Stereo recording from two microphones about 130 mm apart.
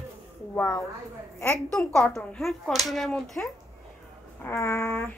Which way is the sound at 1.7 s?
5° left (ahead or behind).